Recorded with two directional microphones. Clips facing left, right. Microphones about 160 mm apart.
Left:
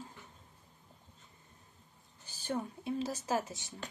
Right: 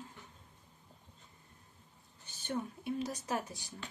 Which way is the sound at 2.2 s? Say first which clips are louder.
Left 1 dB; 30° left (ahead or behind).